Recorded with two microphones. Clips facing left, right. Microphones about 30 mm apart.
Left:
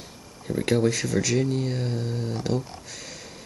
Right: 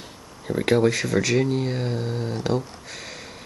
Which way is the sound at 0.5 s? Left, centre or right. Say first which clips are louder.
Right 3 dB; centre.